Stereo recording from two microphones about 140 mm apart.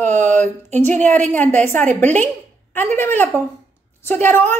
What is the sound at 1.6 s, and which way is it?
A woman's voice, 15° left (ahead or behind).